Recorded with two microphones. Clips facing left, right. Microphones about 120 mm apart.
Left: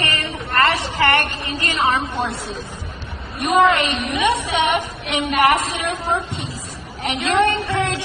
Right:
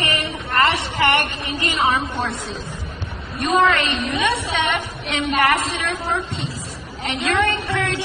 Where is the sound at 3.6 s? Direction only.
20° left (ahead or behind).